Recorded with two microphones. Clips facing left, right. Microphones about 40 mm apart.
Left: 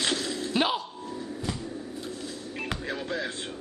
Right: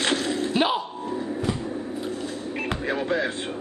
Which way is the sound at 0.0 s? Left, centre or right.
Right.